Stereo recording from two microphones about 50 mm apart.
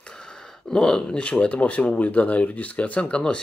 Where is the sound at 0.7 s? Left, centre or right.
Centre; by 3.2 s left.